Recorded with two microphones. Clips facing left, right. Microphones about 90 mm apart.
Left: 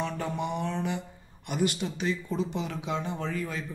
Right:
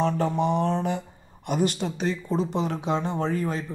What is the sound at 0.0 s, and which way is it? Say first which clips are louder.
A man's voice: right 8 dB; 35° right (ahead or behind).